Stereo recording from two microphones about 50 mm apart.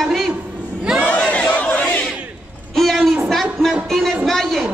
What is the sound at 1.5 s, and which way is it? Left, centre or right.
Crowd, left.